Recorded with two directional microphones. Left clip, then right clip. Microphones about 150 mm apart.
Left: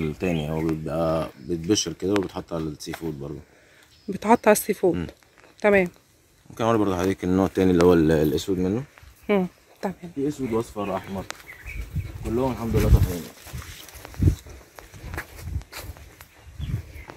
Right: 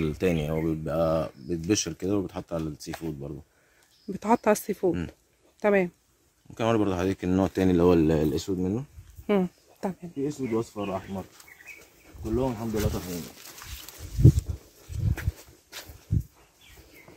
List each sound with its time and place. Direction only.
0.0 s speech: 35° right (ahead or behind)
2.9 s speech: 10° right (ahead or behind)
4.1 s speech: 10° left (ahead or behind)
6.5 s speech: 10° right (ahead or behind)